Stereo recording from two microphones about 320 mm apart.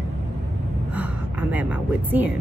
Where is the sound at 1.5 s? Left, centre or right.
Centre.